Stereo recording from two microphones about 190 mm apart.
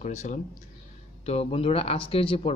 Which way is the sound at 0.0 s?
40° left (ahead or behind).